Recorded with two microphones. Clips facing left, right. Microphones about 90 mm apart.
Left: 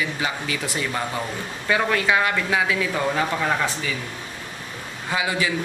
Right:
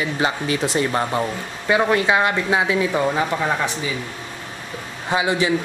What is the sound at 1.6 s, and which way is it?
Speech, 20° right (ahead or behind).